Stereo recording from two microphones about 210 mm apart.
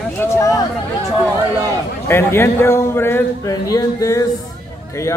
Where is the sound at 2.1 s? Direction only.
10° left (ahead or behind).